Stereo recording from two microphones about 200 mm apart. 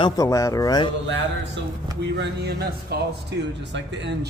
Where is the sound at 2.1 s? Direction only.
55° right (ahead or behind).